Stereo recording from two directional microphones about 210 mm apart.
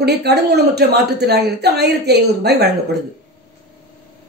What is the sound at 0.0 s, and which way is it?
A woman's voice, 50° right (ahead or behind).